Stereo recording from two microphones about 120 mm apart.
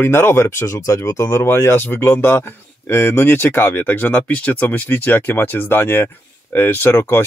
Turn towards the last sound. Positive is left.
turn(degrees=20)  # may be behind; listen again after turning